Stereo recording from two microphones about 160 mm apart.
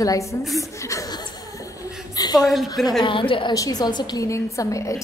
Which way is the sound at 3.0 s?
30° left (ahead or behind).